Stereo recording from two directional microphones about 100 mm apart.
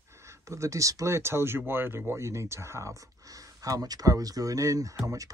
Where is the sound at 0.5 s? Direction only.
30° right (ahead or behind).